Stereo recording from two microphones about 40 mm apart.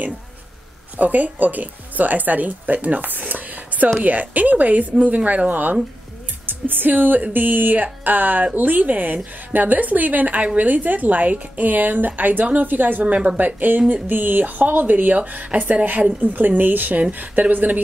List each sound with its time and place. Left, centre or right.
0.9 s a woman's voice: right
13.4 s a woman's voice: right